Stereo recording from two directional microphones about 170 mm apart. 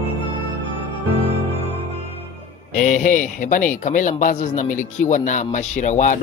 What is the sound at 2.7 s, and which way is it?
A man's voice, 50° left (ahead or behind).